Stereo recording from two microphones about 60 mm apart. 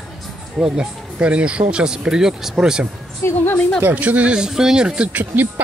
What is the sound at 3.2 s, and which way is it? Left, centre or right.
Speech, left.